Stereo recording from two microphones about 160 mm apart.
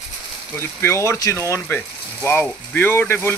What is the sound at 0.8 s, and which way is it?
Speech, 15° left (ahead or behind).